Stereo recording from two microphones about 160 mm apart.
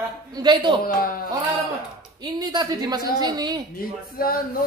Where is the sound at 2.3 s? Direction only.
25° right (ahead or behind).